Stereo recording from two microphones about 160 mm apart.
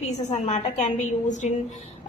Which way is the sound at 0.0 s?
45° left (ahead or behind).